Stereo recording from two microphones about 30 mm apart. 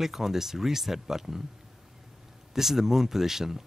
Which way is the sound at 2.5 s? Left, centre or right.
Centre.